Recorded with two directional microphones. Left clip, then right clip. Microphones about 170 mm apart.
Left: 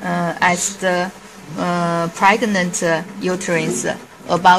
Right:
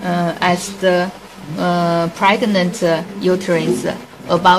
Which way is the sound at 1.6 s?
20° left (ahead or behind).